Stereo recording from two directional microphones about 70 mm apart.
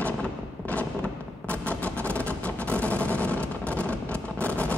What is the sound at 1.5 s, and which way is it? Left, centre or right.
Vehicle, centre.